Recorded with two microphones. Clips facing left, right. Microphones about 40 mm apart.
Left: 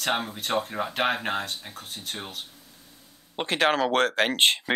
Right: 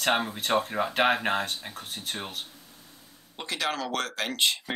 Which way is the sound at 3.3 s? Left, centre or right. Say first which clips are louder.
Left 7 dB; left.